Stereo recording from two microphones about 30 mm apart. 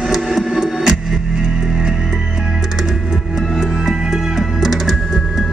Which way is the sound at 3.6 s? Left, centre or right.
Centre.